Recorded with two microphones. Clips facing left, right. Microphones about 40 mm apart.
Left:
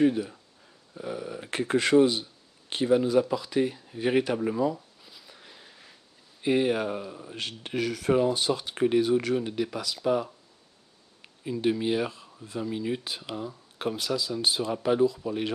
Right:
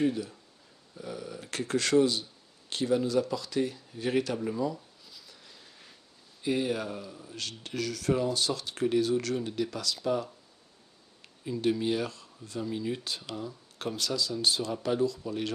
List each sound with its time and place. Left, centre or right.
0.0 s speech: left
5.0 s a sound: left
6.4 s speech: left
11.4 s speech: centre